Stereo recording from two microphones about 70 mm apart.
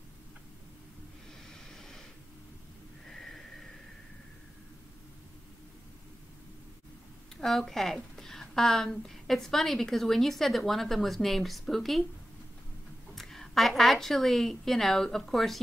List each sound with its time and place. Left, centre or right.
1.5 s snort: centre
3.1 s a sound: centre
7.3 s a woman's voice: centre
13.1 s speech: centre